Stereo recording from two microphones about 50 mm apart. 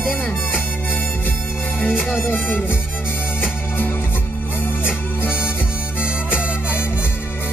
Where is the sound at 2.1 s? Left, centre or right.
Left.